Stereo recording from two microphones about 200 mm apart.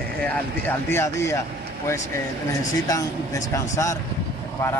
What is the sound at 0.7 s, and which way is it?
Speech, 10° left (ahead or behind).